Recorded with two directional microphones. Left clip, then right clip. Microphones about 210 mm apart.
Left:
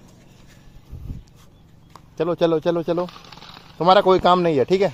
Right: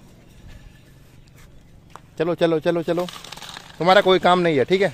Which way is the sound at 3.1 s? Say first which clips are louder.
Right 5 dB; 40° right (ahead or behind).